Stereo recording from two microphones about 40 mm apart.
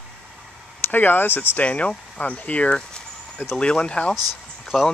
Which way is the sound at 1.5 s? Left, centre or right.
Left.